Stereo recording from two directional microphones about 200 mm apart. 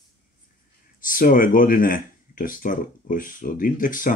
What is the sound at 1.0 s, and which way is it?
Speech, 45° left (ahead or behind).